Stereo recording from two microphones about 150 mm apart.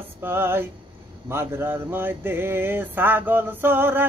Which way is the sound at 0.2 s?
15° right (ahead or behind).